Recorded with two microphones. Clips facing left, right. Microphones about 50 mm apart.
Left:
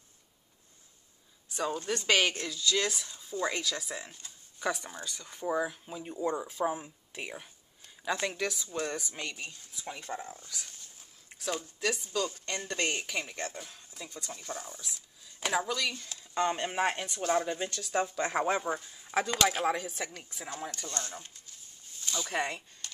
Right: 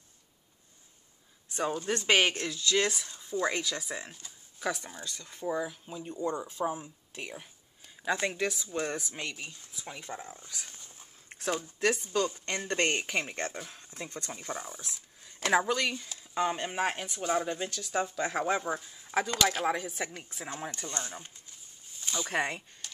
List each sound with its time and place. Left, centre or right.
1.9 s speech: right
2.9 s speech: centre
8.0 s speech: centre
10.4 s dog: right
11.2 s a sound: right
12.1 s speech: right
13.5 s speech: centre
13.9 s speech: right
14.3 s speech: centre
14.8 s speech: right
16.1 s speech: centre
20.4 s speech: right